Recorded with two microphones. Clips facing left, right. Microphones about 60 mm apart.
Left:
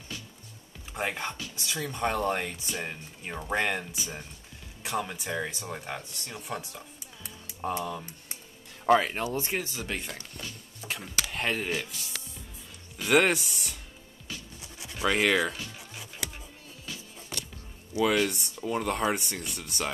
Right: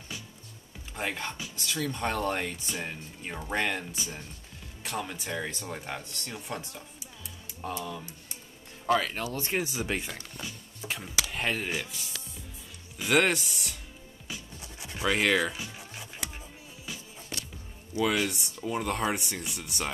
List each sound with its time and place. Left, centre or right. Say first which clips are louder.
0.9 s speech: left 2 dB; centre
8.8 s speech: left 4 dB; left
9.6 s speech: right 3 dB; centre
10.8 s music: even; centre
12.9 s speech: left 2 dB; centre
15.0 s speech: left 1 dB; centre
15.5 s music: right 1 dB; centre
18.0 s speech: left 2 dB; centre